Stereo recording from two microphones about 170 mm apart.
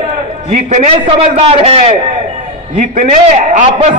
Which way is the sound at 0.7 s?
40° right (ahead or behind).